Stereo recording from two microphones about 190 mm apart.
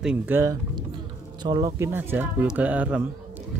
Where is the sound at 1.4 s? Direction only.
20° right (ahead or behind).